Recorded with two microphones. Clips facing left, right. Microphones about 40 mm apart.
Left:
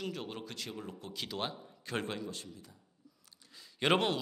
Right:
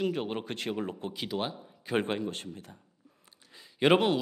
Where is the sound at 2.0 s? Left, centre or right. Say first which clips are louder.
Right 8 dB; right.